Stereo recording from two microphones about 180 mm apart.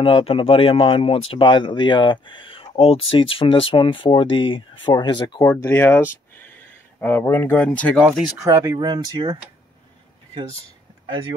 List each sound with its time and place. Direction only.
0.0 s speech: 30° left (ahead or behind)
5.5 s speech: 15° left (ahead or behind)
6.3 s a sound: 10° left (ahead or behind)
8.0 s speech: centre (ahead or behind)
8.4 s speech: 20° right (ahead or behind)